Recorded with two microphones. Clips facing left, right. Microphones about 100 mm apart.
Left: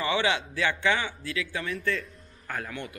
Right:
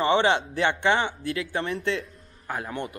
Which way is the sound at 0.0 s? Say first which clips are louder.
Right 5 dB; 25° right (ahead or behind).